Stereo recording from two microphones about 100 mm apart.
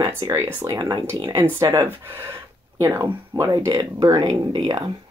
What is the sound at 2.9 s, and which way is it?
Speech, 30° right (ahead or behind).